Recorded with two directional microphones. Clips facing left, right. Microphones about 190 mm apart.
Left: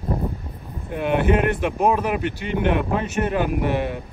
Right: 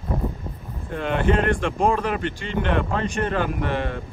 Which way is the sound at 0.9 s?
10° left (ahead or behind).